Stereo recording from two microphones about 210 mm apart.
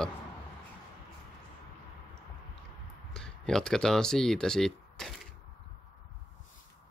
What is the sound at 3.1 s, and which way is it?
Speech, centre (ahead or behind).